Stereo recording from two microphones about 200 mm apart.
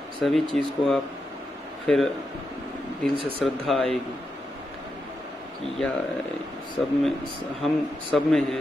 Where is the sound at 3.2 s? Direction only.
25° right (ahead or behind).